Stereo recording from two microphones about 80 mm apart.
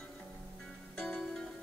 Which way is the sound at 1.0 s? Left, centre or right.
Centre.